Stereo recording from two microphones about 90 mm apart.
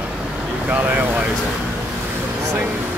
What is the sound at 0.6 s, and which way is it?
Speech, 20° right (ahead or behind).